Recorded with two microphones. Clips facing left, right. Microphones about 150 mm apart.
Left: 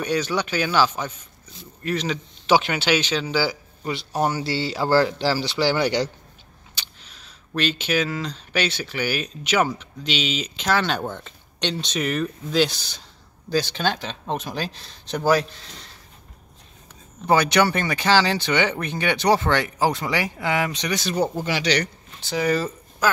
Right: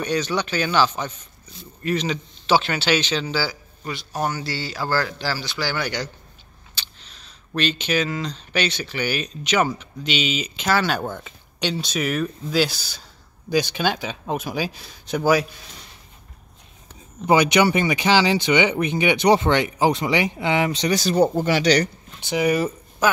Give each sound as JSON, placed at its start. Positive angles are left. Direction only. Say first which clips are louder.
{"t": 0.0, "sound": "speech", "louder": "even", "side_deg": 5}
{"t": 2.4, "sound": "speech", "louder": "even", "side_deg": 15}
{"t": 3.3, "sound": "a man's voice", "louder": "left 3 dB", "side_deg": 20}
{"t": 6.7, "sound": "speech", "louder": "right 1 dB", "side_deg": 10}
{"t": 17.3, "sound": "speech", "louder": "right 2 dB", "side_deg": -15}
{"t": 22.2, "sound": "speech", "louder": "right 2 dB", "side_deg": -15}